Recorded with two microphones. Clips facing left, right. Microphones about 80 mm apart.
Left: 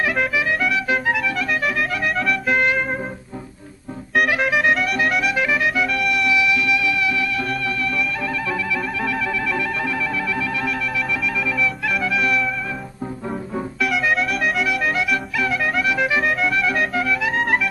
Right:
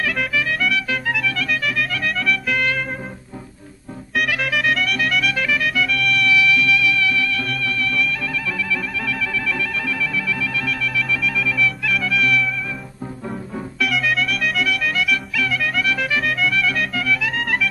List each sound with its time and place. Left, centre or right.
0.9 s music: centre
4.4 s music: centre
5.8 s music: left
6.1 s music: left
9.0 s music: left
11.2 s music: centre
12.1 s music: left
13.7 s music: centre
15.0 s music: left
15.6 s music: centre
16.6 s music: left
17.1 s music: centre